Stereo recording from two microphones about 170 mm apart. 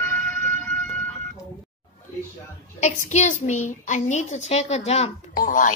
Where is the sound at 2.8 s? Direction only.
45° left (ahead or behind).